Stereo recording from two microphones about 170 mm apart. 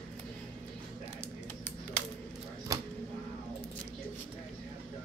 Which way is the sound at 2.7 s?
20° right (ahead or behind).